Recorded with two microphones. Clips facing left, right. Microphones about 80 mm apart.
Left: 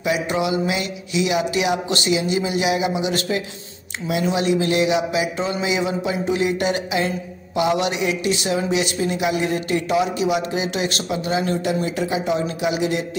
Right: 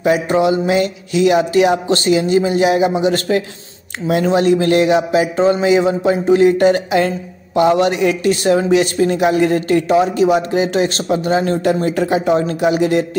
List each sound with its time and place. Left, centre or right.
0.0 s music: right
4.1 s speech: right